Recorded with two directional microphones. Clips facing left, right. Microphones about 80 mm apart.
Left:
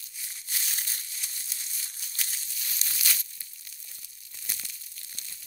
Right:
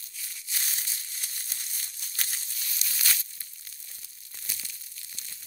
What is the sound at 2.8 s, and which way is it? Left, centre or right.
Tearing, left.